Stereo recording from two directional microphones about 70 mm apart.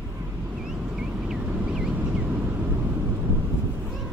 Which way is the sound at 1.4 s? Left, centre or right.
Right.